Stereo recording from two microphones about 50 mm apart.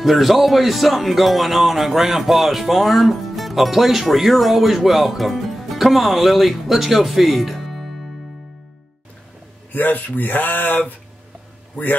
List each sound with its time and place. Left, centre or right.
0.0 s speech: centre
9.7 s a man's voice: left